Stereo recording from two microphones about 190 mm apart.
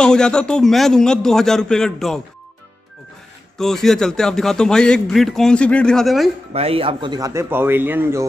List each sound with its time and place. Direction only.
0.0 s a man's voice: 5° left (ahead or behind)
3.5 s a man's voice: centre (ahead or behind)
6.5 s speech: 30° right (ahead or behind); by 8.3 s 10° right (ahead or behind)